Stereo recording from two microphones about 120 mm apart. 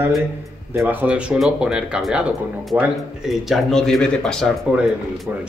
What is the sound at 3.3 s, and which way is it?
Speech, centre (ahead or behind).